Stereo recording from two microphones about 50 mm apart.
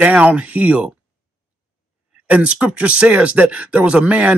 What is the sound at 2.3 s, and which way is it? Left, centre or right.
Speech, right.